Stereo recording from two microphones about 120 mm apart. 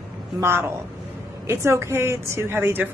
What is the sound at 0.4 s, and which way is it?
A woman's voice, 20° right (ahead or behind).